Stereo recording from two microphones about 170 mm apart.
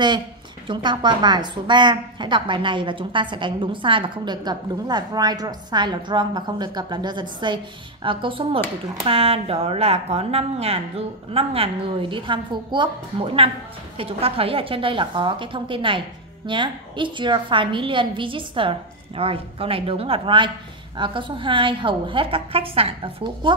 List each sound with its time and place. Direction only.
0.7 s a woman's voice: 25° right (ahead or behind)